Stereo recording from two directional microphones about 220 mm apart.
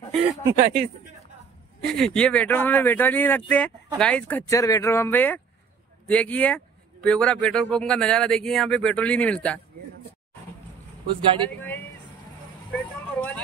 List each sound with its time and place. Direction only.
0.6 s speech: 35° right (ahead or behind)
1.8 s a man's voice: 5° left (ahead or behind)
11.1 s speech: 25° right (ahead or behind)
11.4 s speech: 10° left (ahead or behind)
12.7 s vehicle: 5° left (ahead or behind)